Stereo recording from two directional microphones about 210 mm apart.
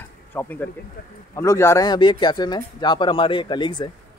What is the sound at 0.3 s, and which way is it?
Speech, 10° left (ahead or behind).